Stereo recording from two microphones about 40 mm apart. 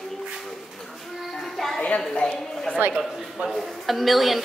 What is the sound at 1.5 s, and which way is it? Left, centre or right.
Music, centre.